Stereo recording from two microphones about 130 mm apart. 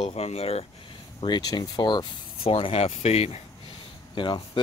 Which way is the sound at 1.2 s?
30° left (ahead or behind).